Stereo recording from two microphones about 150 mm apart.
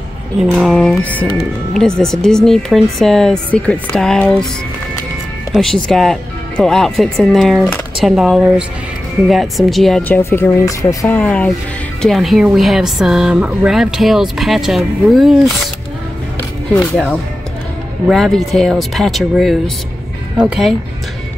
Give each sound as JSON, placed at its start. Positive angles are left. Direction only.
{"t": 0.4, "sound": "speech", "side_deg": 0}
{"t": 5.5, "sound": "speech", "side_deg": 0}
{"t": 10.0, "sound": "speech", "side_deg": 10}
{"t": 11.1, "sound": "speech", "side_deg": 10}
{"t": 16.8, "sound": "speech", "side_deg": 0}